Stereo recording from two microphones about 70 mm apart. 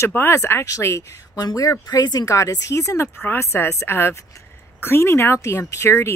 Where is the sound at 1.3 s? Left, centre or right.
Left.